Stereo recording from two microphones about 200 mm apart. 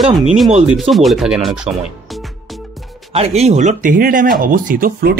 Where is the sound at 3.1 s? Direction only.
30° right (ahead or behind).